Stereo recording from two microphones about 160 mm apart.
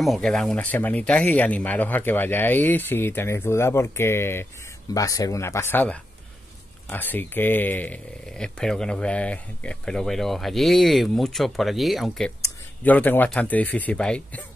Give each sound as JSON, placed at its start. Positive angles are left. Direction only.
{"t": 0.0, "sound": "speech", "side_deg": 0}
{"t": 12.8, "sound": "speech", "side_deg": 10}